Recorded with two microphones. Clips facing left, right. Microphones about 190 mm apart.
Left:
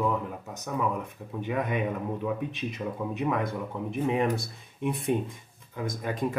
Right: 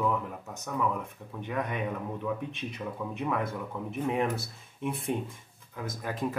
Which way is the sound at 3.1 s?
Centre (ahead or behind).